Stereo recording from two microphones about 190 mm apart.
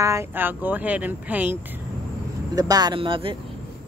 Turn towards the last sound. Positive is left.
turn(degrees=-25)  # may be behind; listen again after turning